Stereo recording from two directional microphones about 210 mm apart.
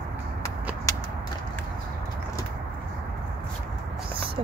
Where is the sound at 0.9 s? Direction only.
15° left (ahead or behind).